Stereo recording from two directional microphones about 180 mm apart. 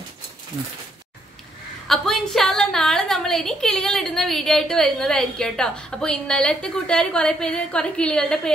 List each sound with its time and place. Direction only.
1.9 s a woman's voice: centre (ahead or behind)